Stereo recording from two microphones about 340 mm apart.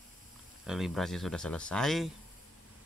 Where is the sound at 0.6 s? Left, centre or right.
Centre.